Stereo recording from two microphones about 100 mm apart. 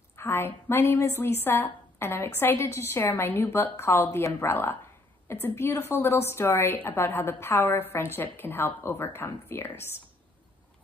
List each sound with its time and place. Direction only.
0.1 s a woman's voice: 25° left (ahead or behind)